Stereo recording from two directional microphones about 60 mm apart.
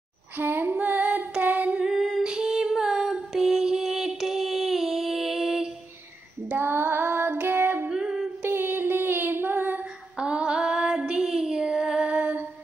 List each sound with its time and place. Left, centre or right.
0.4 s female singing: right
1.4 s singing: right
1.9 s humming: centre
2.2 s music: centre
6.5 s child singing: right
7.9 s a sound: centre
8.4 s a sound: right
10.1 s female singing: centre